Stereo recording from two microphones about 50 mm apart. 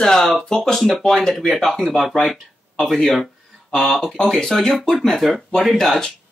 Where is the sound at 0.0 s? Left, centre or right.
Centre.